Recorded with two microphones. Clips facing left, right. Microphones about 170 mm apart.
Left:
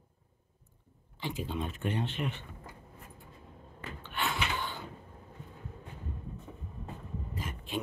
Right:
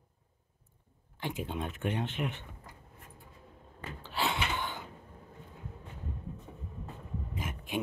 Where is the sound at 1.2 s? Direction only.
55° right (ahead or behind).